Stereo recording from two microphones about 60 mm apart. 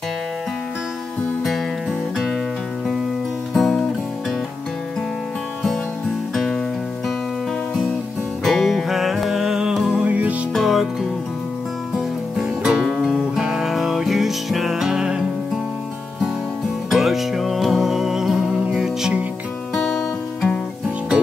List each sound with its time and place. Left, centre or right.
1.4 s music: centre
3.5 s music: centre
8.5 s music: centre
9.9 s music: right
10.5 s music: centre
16.9 s music: centre
19.7 s music: centre